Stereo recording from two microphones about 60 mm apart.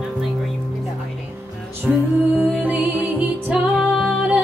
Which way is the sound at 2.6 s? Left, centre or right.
Right.